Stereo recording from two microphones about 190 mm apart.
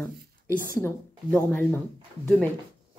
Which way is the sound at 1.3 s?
5° left (ahead or behind).